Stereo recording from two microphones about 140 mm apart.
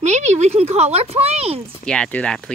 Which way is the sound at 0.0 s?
55° right (ahead or behind).